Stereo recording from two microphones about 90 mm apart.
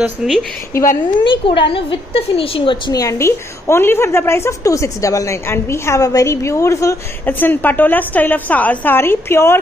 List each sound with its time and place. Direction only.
0.2 s a woman's voice: centre (ahead or behind)
0.7 s a woman's voice: 35° left (ahead or behind)
1.2 s a woman's voice: 70° left (ahead or behind)
2.9 s a woman's voice: 40° left (ahead or behind)
7.2 s a woman's voice: 20° left (ahead or behind)